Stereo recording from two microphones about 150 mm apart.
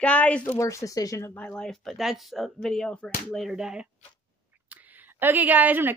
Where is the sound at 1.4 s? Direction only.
5° left (ahead or behind).